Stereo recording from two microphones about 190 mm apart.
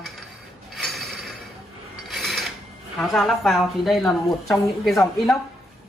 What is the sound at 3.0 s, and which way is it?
A woman's voice, centre (ahead or behind).